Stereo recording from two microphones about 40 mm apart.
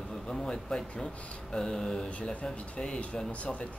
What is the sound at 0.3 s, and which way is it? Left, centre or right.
Speech, centre.